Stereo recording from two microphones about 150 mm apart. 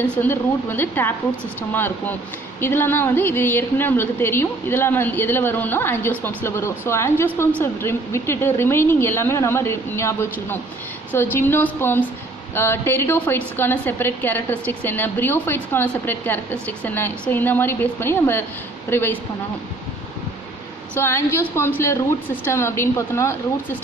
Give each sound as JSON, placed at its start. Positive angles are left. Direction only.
{"t": 0.0, "sound": "a woman's voice", "side_deg": 10}
{"t": 20.9, "sound": "a woman's voice", "side_deg": 15}